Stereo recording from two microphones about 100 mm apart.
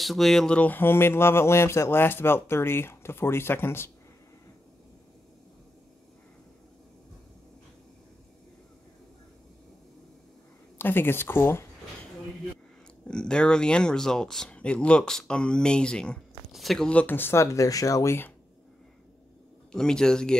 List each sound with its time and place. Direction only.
0.0 s speech: centre (ahead or behind)
0.6 s speech: 20° left (ahead or behind)
10.8 s speech: 20° left (ahead or behind)
13.1 s speech: 10° left (ahead or behind)
17.0 s speech: 20° left (ahead or behind)
19.7 s speech: 5° left (ahead or behind)